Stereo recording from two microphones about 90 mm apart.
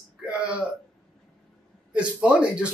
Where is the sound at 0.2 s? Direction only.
10° right (ahead or behind).